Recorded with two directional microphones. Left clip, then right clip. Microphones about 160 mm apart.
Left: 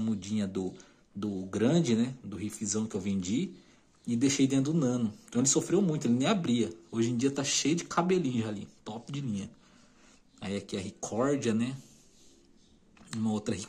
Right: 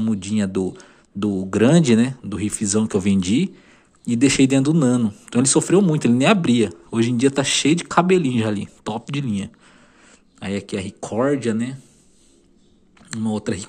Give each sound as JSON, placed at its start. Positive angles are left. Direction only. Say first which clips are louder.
{"t": 0.0, "sound": "speech", "louder": "right 11 dB", "side_deg": -15}
{"t": 13.1, "sound": "speech", "louder": "right 9 dB", "side_deg": -5}